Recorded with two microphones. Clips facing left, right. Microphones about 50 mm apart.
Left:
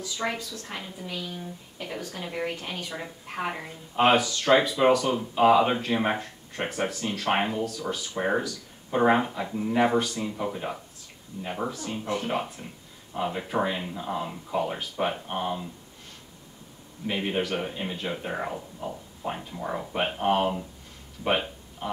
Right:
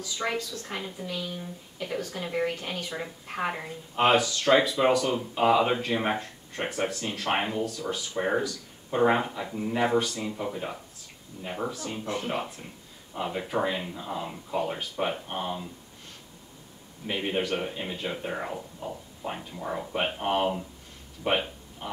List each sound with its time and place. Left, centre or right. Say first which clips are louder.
0.2 s speech: right 1 dB; centre
7.8 s speech: left 1 dB; centre
8.2 s speech: even; centre
17.0 s speech: left 1 dB; centre
21.2 s a sound: left 1 dB; centre